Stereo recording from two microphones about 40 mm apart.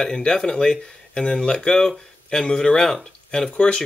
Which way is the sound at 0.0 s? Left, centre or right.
Centre.